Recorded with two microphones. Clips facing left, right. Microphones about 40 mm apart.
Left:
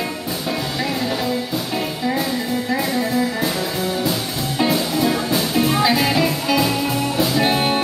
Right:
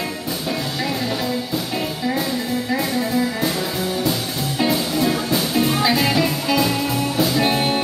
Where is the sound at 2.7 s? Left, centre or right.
Centre.